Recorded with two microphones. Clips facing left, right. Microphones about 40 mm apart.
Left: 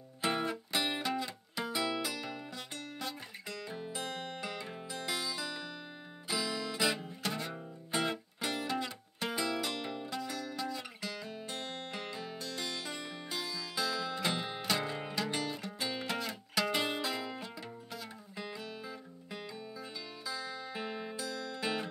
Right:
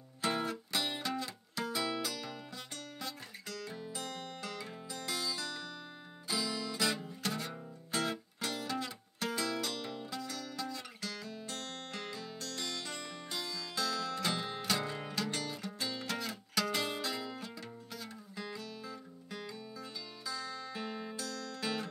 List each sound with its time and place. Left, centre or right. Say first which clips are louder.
0.2 s music: left 1 dB; centre
3.4 s music: left 1 dB; centre